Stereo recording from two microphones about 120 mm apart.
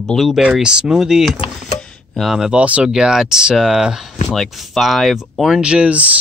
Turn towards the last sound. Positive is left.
turn(degrees=-10)  # may be behind; listen again after turning